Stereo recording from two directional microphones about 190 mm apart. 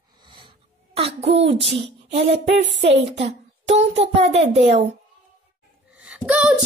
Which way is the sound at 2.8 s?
35° right (ahead or behind).